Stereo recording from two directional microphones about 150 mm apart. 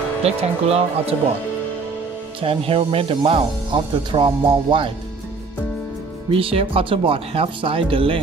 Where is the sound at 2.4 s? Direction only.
35° right (ahead or behind).